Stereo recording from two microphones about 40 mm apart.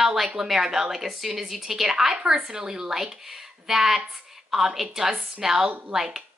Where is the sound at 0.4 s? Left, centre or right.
Centre.